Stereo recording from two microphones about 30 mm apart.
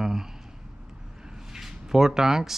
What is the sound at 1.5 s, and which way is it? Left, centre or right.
Speech, centre.